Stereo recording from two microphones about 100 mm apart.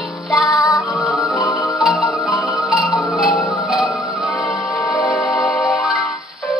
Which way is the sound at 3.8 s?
15° left (ahead or behind).